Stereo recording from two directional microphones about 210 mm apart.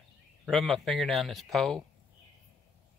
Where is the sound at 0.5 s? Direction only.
Centre (ahead or behind).